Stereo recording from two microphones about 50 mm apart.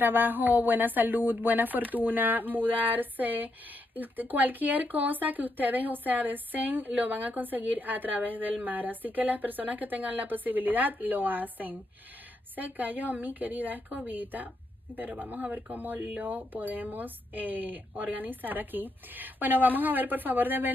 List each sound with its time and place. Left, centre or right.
0.0 s speech: right